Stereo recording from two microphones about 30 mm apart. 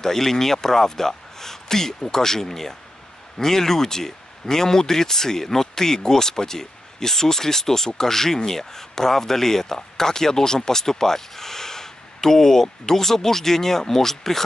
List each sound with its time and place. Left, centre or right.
0.0 s speech: centre